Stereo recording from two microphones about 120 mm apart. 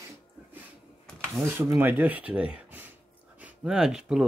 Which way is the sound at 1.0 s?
5° left (ahead or behind).